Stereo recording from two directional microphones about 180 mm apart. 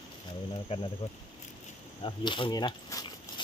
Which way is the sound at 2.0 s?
25° left (ahead or behind).